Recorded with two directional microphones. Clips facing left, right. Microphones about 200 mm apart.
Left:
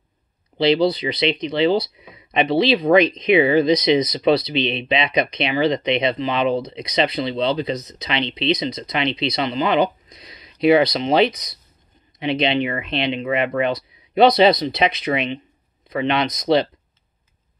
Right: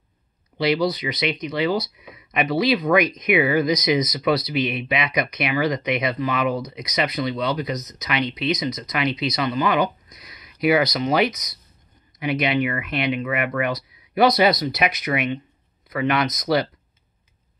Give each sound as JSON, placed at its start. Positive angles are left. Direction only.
{"t": 0.6, "sound": "speech", "side_deg": 30}